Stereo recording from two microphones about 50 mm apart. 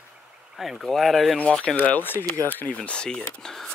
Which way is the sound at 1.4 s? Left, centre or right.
Left.